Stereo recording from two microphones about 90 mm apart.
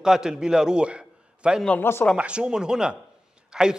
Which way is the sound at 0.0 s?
5° right (ahead or behind).